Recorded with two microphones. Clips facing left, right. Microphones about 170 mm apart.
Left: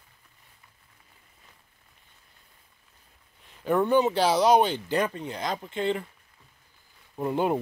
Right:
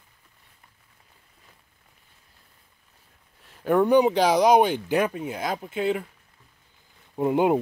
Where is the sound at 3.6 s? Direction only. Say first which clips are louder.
Right 4 dB; 10° right (ahead or behind).